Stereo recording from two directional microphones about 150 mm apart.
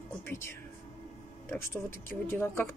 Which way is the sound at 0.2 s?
15° left (ahead or behind).